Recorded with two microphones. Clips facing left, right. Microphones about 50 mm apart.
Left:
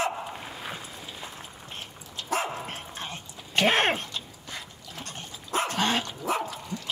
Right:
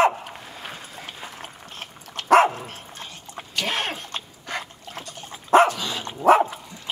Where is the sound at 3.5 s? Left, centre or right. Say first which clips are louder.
Left 4 dB; left.